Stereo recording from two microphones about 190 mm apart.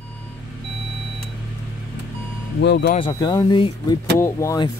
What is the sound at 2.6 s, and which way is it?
Speech, 60° left (ahead or behind).